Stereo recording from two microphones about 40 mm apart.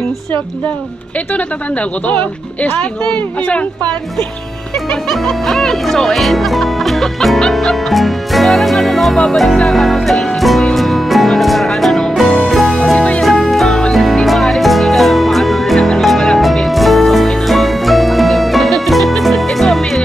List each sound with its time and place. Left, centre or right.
1.3 s speech: left
5.1 s speech: centre
7.5 s music: centre
9.1 s speech: centre
9.6 s music: centre